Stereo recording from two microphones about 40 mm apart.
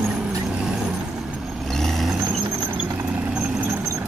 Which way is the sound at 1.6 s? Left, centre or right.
Centre.